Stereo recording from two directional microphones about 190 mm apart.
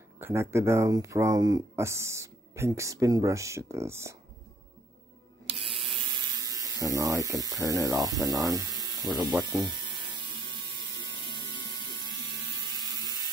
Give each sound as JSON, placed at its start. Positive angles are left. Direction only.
{"t": 0.2, "sound": "speech", "side_deg": -15}
{"t": 5.5, "sound": "a sound", "side_deg": -30}
{"t": 6.4, "sound": "speech", "side_deg": -20}
{"t": 7.4, "sound": "speech", "side_deg": 20}
{"t": 7.8, "sound": "speech", "side_deg": -20}
{"t": 9.4, "sound": "electric shaver", "side_deg": -25}
{"t": 10.2, "sound": "ratchet", "side_deg": 25}
{"t": 11.7, "sound": "electric toothbrush", "side_deg": -20}